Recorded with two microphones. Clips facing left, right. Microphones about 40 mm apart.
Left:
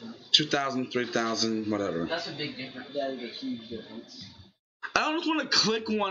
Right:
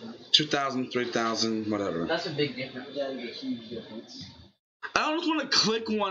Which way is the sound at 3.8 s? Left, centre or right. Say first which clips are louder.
Right 2 dB; centre.